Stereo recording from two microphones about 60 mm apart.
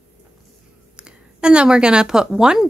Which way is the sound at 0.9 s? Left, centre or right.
Centre.